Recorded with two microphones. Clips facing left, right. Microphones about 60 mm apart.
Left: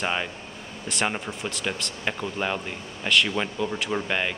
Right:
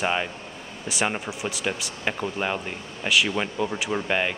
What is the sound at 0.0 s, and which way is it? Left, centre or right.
Speech, centre.